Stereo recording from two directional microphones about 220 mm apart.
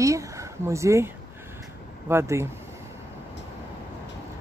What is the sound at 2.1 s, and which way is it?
Speech, 10° right (ahead or behind).